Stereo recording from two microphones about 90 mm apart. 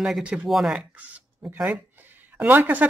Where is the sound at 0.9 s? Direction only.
20° right (ahead or behind).